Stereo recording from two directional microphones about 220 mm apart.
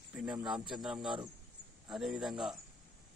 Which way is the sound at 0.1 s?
5° right (ahead or behind).